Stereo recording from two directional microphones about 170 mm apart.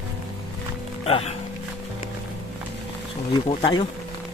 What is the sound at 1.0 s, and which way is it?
Speech, 35° left (ahead or behind).